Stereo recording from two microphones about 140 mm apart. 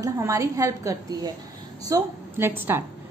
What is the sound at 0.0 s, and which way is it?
A woman's voice, 20° right (ahead or behind).